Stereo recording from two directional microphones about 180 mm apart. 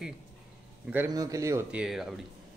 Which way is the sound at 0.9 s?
20° right (ahead or behind).